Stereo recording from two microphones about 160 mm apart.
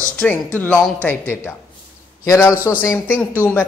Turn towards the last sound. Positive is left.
turn(degrees=10)  # may be behind; listen again after turning